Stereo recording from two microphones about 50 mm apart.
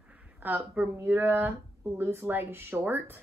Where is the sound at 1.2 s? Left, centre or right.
Right.